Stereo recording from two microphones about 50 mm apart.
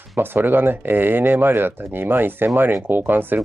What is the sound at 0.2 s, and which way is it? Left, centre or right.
Speech, right.